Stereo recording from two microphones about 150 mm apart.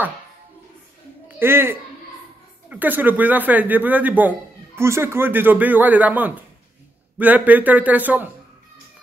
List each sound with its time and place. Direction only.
1.4 s a man's voice: 15° right (ahead or behind)